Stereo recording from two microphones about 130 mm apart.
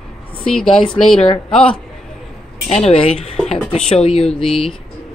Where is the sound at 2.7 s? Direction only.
50° left (ahead or behind).